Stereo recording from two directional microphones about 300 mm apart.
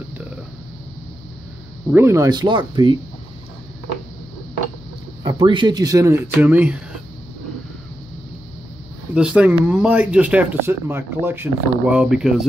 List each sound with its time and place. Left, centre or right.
1.9 s speech: centre
5.2 s speech: centre
9.1 s speech: centre